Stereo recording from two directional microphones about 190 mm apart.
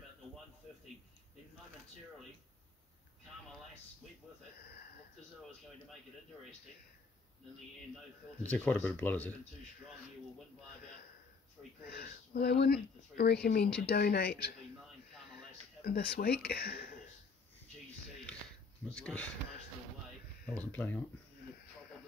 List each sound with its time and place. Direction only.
7.9 s speech: 5° left (ahead or behind)
11.8 s speech: 55° left (ahead or behind)
15.8 s speech: 55° left (ahead or behind)
18.9 s speech: 5° left (ahead or behind)
20.4 s speech: 5° left (ahead or behind)